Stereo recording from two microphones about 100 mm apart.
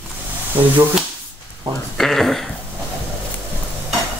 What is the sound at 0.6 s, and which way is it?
Speech, 60° right (ahead or behind).